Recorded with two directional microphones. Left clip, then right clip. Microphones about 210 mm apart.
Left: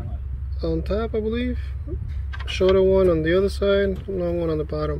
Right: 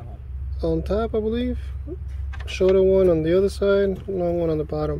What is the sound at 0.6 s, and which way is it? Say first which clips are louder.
Speech: right 2 dB; 15° right (ahead or behind).